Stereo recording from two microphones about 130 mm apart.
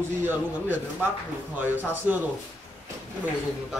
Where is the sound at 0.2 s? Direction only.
15° right (ahead or behind).